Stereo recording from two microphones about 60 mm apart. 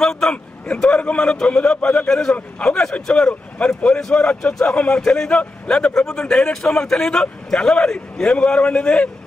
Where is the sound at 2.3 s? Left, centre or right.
Left.